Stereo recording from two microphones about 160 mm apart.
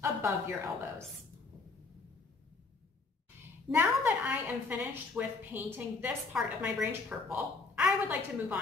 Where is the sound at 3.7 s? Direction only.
15° right (ahead or behind).